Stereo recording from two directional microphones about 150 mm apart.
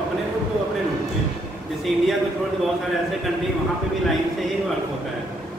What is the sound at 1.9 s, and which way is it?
Speech, centre (ahead or behind).